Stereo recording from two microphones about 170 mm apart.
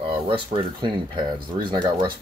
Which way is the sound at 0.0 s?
30° right (ahead or behind).